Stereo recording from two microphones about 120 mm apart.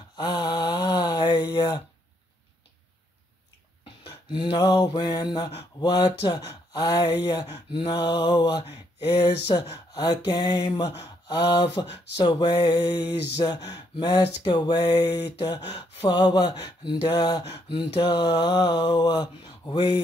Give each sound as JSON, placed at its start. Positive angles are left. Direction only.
{"t": 0.1, "sound": "snoring", "side_deg": 35}
{"t": 4.0, "sound": "mantra", "side_deg": 40}
{"t": 17.4, "sound": "a sound", "side_deg": 45}